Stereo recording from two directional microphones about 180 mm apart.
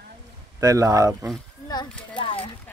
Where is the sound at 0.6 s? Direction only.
20° right (ahead or behind).